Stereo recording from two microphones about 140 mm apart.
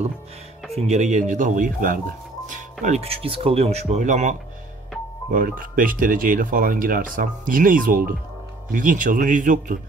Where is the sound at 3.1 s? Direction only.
40° right (ahead or behind); by 4.4 s 60° right (ahead or behind).